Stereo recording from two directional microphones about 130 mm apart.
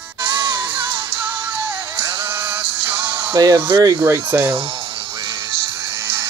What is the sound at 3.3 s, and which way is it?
Speech, 35° right (ahead or behind).